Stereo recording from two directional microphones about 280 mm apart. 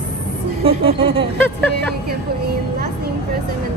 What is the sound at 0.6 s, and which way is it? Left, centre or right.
Speech, centre.